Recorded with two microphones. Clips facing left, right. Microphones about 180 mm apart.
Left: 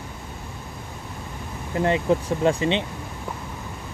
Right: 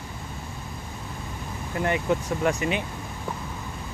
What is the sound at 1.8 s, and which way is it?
Speech, 30° left (ahead or behind).